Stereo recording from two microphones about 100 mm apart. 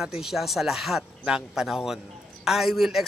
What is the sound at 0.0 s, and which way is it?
A man's voice, 5° right (ahead or behind).